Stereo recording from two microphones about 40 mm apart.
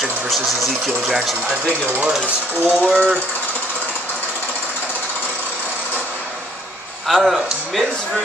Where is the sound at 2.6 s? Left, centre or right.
Left.